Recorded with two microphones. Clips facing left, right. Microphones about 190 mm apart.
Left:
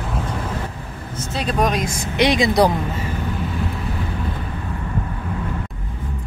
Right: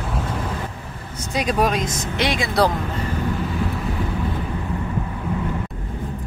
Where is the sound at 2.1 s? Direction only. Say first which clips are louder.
Left 5 dB; 15° left (ahead or behind).